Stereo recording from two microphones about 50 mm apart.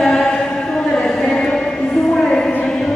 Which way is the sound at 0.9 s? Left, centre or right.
Centre.